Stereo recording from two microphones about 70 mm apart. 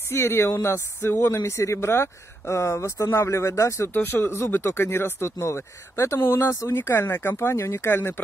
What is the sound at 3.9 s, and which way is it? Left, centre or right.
Speech, left.